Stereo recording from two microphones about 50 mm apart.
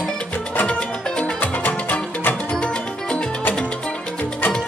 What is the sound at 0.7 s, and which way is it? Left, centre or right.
Music, left.